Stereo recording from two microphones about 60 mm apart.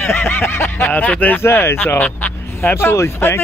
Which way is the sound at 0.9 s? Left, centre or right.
Left.